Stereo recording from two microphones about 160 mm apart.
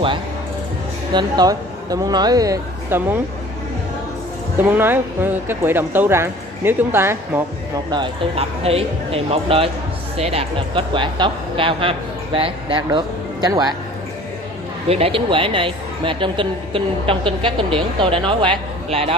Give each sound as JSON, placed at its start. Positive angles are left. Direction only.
{"t": 1.1, "sound": "speech", "side_deg": -25}
{"t": 4.6, "sound": "speech", "side_deg": -15}
{"t": 7.9, "sound": "a woman's voice", "side_deg": -35}
{"t": 14.9, "sound": "a woman's voice", "side_deg": -35}